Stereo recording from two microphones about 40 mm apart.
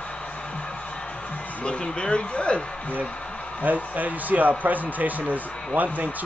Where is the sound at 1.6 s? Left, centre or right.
Left.